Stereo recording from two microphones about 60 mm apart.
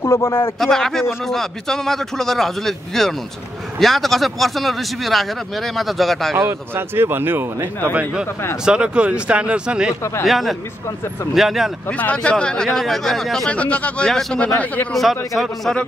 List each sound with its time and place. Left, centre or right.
0.0 s speech: left
0.6 s a man's voice: centre
6.4 s speech: right
8.6 s speech: centre
10.2 s a man's voice: centre
12.0 s speech: left; by 13.5 s centre
13.5 s speech: left
14.9 s a man's voice: centre